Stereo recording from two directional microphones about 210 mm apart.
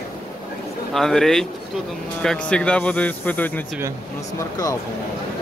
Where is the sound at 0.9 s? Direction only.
Centre (ahead or behind).